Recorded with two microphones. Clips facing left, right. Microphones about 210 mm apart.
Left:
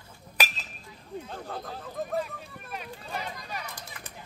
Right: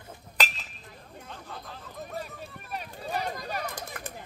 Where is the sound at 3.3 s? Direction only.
55° right (ahead or behind).